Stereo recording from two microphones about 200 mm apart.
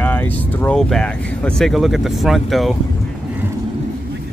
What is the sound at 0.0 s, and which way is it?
Speech, 10° left (ahead or behind).